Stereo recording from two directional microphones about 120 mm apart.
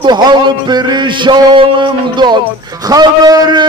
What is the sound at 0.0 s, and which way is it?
A man's voice, 35° right (ahead or behind).